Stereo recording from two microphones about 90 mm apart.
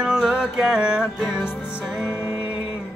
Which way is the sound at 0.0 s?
5° right (ahead or behind).